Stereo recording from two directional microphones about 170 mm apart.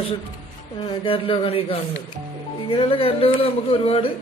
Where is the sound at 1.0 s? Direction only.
30° left (ahead or behind).